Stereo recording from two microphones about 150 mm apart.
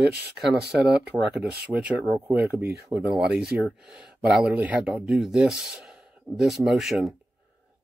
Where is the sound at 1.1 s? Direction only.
20° right (ahead or behind).